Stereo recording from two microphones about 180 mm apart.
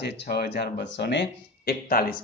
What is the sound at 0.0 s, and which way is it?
Speech, 65° left (ahead or behind).